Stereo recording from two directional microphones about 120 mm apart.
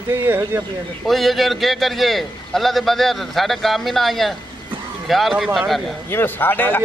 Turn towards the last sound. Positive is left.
turn(degrees=15)  # may be behind; listen again after turning